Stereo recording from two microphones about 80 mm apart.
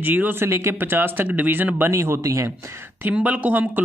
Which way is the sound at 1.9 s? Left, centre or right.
Right.